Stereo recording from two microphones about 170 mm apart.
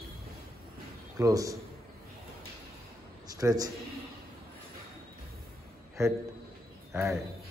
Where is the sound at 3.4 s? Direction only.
20° right (ahead or behind).